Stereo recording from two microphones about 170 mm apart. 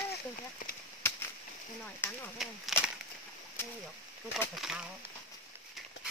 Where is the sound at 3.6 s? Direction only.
15° left (ahead or behind).